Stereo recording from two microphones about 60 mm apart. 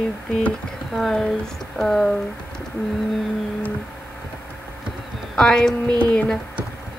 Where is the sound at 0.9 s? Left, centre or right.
Centre.